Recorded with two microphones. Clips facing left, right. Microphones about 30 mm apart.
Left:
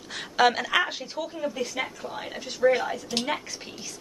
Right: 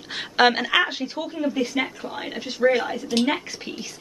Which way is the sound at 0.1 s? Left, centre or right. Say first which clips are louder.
Right 3 dB; right.